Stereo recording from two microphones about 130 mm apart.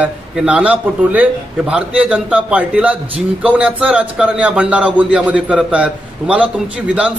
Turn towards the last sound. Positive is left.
turn(degrees=-10)  # may be behind; listen again after turning